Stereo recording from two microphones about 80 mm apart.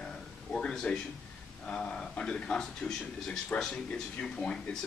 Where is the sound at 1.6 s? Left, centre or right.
Centre.